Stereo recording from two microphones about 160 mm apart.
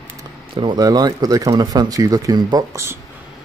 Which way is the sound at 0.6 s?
25° right (ahead or behind).